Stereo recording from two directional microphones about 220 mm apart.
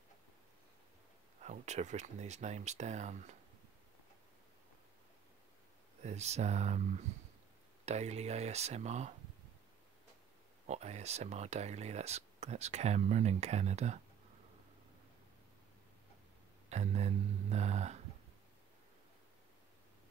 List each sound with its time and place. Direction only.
1.4 s speech: 30° right (ahead or behind)
6.0 s speech: 30° right (ahead or behind)
10.7 s speech: 30° right (ahead or behind)
16.6 s speech: 30° right (ahead or behind)